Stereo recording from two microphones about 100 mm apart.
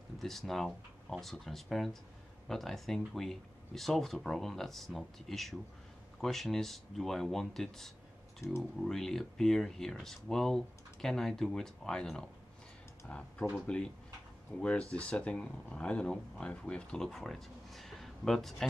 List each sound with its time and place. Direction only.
0.2 s speech: centre (ahead or behind)
8.4 s speech: 30° left (ahead or behind)
8.8 s speech: 5° left (ahead or behind)